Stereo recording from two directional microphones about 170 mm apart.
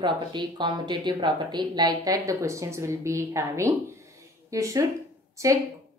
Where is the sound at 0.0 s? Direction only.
25° right (ahead or behind).